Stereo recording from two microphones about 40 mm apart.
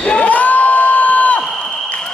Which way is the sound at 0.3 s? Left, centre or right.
Left.